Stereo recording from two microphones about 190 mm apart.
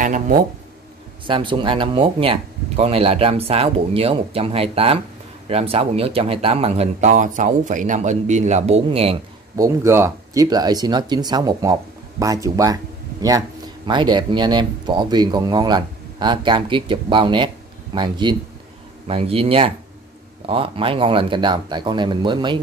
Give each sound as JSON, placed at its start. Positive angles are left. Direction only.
{"t": 0.0, "sound": "speech", "side_deg": -45}
{"t": 1.2, "sound": "speech", "side_deg": -25}
{"t": 9.6, "sound": "speech", "side_deg": -15}
{"t": 13.8, "sound": "speech", "side_deg": -25}